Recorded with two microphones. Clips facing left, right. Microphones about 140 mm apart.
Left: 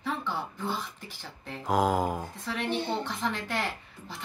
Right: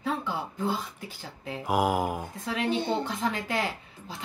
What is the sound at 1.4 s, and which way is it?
Speech, 10° right (ahead or behind).